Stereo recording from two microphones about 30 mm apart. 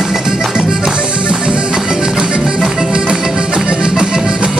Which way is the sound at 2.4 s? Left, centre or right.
Centre.